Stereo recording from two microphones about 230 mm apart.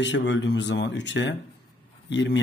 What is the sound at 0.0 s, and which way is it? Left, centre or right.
Speech, left.